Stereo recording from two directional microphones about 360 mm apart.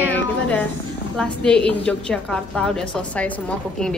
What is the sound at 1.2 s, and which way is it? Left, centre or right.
A woman's voice, centre.